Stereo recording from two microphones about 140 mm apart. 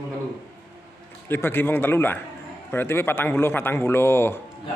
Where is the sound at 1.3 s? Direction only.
15° left (ahead or behind).